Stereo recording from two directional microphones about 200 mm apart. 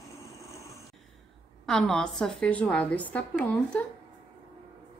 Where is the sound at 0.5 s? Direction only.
15° left (ahead or behind).